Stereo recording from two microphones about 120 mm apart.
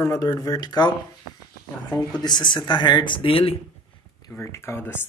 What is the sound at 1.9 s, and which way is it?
Speech, 35° left (ahead or behind).